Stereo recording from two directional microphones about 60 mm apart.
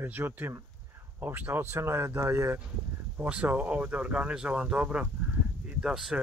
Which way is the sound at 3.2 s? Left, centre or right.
Right.